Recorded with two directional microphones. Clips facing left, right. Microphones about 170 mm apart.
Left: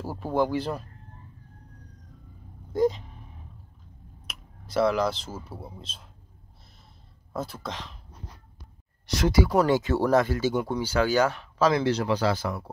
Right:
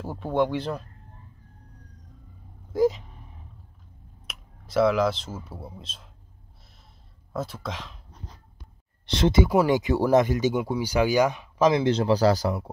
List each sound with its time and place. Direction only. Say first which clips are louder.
0.0 s speech: right 1 dB; 5° left (ahead or behind)
2.7 s speech: right 2 dB; 5° right (ahead or behind)
4.3 s speech: right 2 dB; centre (ahead or behind)
7.3 s speech: right 1 dB; centre (ahead or behind)
9.0 s speech: right 2 dB; 25° right (ahead or behind)
9.5 s speech: right 1 dB; 10° right (ahead or behind)
12.1 s speech: right 5 dB; 40° right (ahead or behind)